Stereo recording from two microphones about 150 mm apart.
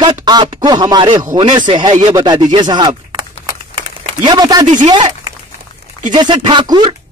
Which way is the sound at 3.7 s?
30° right (ahead or behind).